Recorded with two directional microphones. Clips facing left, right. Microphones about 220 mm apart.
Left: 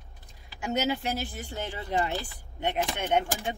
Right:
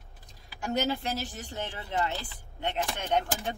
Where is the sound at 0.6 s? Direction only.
5° left (ahead or behind).